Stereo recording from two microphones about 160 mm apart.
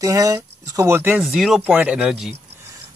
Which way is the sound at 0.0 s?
20° right (ahead or behind).